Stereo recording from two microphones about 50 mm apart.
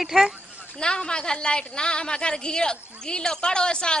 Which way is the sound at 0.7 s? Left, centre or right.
Centre.